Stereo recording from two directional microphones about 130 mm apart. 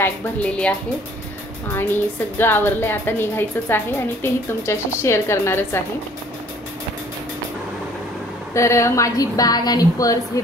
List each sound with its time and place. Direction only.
0.0 s a woman's voice: 10° left (ahead or behind)
2.3 s a woman's voice: 15° left (ahead or behind)
8.5 s a woman's voice: 20° left (ahead or behind)